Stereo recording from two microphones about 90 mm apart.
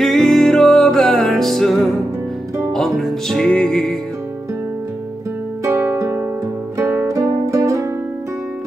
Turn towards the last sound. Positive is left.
turn(degrees=-35)  # may be behind; listen again after turning